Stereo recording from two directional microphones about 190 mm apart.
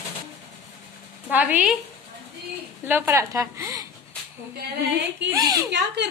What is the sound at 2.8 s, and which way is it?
Speech, 10° right (ahead or behind).